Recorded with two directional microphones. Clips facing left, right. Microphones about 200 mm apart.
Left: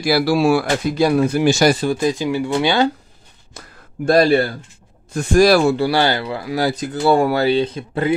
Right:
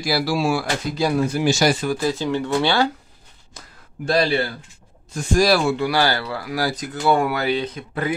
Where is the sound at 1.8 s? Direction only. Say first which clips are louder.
Left 3 dB; 20° left (ahead or behind).